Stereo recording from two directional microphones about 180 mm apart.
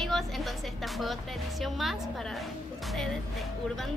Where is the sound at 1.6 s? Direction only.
Centre (ahead or behind).